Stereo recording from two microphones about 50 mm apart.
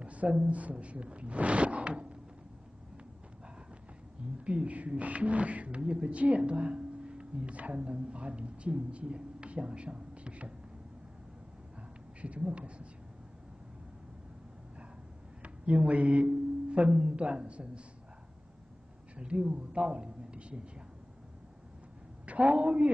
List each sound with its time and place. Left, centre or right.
0.0 s speech: right
4.5 s speech: right
12.2 s speech: right
15.4 s speech: right
19.1 s speech: right
22.2 s a man's voice: right